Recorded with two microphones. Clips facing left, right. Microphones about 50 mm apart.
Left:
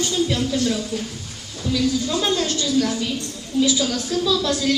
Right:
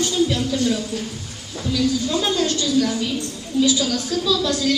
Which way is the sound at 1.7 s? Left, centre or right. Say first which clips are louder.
Even; centre.